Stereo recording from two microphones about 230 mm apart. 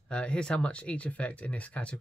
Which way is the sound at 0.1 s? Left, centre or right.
Centre.